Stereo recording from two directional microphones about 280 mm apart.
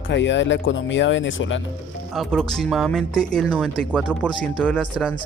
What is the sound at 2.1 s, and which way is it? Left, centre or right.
Speech, centre.